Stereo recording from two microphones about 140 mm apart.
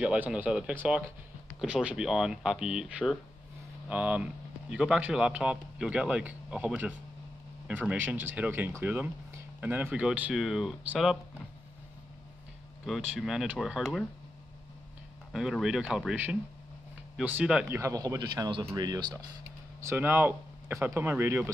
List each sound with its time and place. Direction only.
0.0 s speech: 10° right (ahead or behind)
12.8 s speech: centre (ahead or behind)
15.3 s speech: 5° right (ahead or behind)
17.7 s speech: 25° right (ahead or behind)
19.8 s speech: 15° right (ahead or behind)